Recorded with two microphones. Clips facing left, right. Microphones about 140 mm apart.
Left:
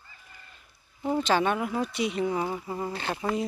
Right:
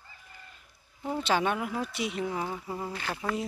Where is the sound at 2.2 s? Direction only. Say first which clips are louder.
Left 4 dB; 10° left (ahead or behind).